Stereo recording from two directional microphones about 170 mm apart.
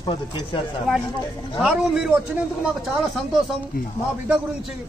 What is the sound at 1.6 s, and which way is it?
Speech, 5° right (ahead or behind).